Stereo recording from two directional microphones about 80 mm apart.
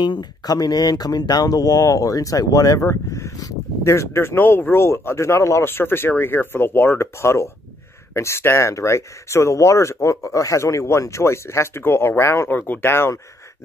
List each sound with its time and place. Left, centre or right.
0.0 s speech: left
2.8 s speech: left
12.5 s speech: left